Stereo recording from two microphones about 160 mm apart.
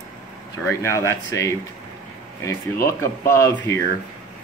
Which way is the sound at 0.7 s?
15° left (ahead or behind).